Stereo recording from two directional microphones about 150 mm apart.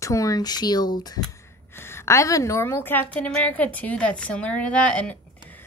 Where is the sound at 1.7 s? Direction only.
15° left (ahead or behind).